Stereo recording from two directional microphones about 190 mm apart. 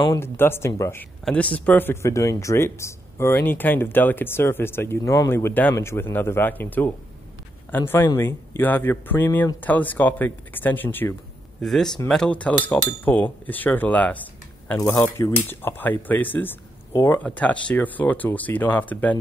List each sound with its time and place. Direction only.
0.0 s speech: 15° left (ahead or behind)